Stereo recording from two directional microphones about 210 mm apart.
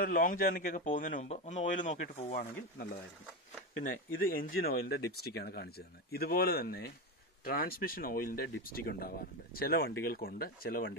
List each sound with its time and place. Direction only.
0.0 s a man's voice: 40° left (ahead or behind)
3.8 s speech: 45° left (ahead or behind)